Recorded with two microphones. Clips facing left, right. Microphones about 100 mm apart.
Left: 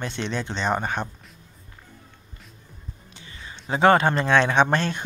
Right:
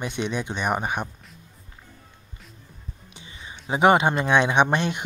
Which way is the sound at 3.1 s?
20° right (ahead or behind).